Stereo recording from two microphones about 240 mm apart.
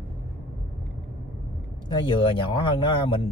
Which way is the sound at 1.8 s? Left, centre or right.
Centre.